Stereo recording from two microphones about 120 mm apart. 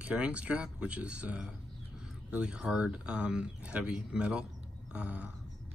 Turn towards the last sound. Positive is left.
turn(degrees=-10)  # may be behind; listen again after turning